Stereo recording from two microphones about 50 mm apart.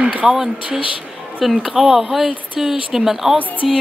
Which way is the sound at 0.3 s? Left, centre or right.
Centre.